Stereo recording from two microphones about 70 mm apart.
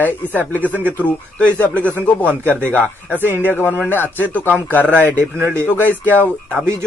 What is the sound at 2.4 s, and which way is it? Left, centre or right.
Speech, left.